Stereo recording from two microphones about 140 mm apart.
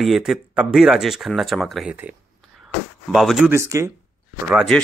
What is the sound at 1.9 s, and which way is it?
Speech, 10° right (ahead or behind).